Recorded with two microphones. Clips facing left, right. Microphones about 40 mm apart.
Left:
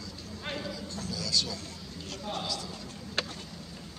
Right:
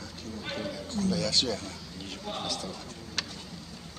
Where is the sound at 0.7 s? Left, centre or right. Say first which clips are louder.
Right 7 dB; right.